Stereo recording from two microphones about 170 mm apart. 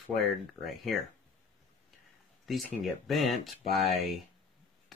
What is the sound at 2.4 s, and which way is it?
Speech, centre (ahead or behind).